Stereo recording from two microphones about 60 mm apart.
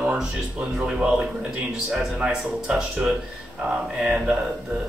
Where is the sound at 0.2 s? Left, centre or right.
Centre.